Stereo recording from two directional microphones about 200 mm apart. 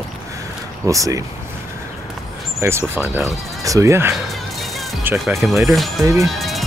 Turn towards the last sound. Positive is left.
turn(degrees=0)  # may be behind; listen again after turning